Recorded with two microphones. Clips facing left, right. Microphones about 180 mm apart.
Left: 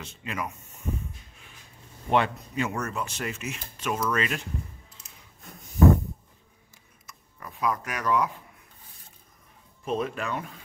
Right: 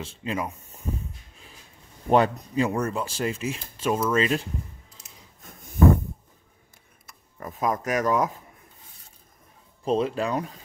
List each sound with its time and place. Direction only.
0.0 s speech: 30° right (ahead or behind)
2.0 s speech: 40° right (ahead or behind)
7.1 s speech: 45° right (ahead or behind)
9.8 s speech: 30° right (ahead or behind)